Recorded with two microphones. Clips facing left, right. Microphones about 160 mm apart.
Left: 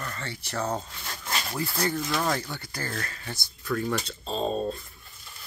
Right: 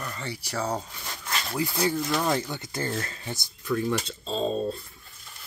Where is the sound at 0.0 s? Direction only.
15° right (ahead or behind).